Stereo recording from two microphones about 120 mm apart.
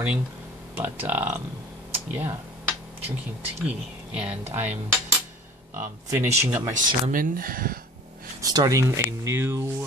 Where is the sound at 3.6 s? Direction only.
10° right (ahead or behind).